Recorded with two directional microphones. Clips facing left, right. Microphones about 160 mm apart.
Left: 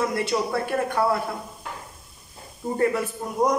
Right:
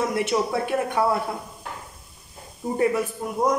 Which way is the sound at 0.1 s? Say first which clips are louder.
Right 1 dB; 20° right (ahead or behind).